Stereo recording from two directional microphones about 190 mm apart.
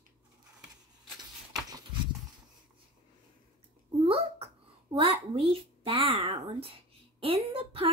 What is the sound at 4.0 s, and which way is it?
Babbling, 30° right (ahead or behind).